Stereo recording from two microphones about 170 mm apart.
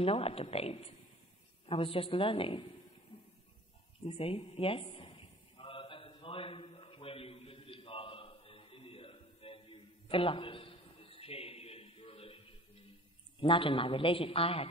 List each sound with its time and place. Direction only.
0.0 s a man's voice: 35° left (ahead or behind)
4.0 s a man's voice: 35° left (ahead or behind)
4.4 s a sound: 30° left (ahead or behind)
13.4 s a man's voice: 30° left (ahead or behind)